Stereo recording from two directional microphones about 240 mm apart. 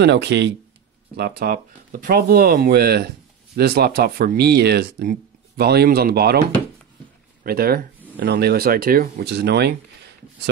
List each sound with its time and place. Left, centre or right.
0.0 s speech: right
7.4 s speech: right